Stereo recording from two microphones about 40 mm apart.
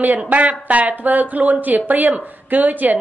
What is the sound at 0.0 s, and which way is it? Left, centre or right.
A woman's voice, right.